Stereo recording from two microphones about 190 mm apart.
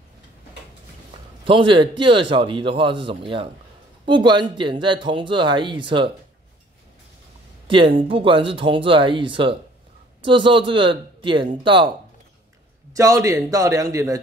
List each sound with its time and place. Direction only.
1.4 s speech: 25° right (ahead or behind)
7.6 s speech: 25° right (ahead or behind)
12.9 s a man's voice: 15° right (ahead or behind)